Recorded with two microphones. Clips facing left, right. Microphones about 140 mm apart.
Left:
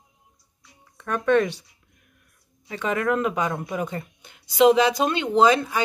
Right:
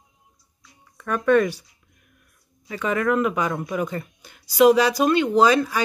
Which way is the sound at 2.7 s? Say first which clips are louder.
Right 2 dB; 25° left (ahead or behind).